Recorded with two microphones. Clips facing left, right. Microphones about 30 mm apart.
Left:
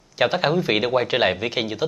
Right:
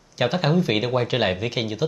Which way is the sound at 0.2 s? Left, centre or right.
Centre.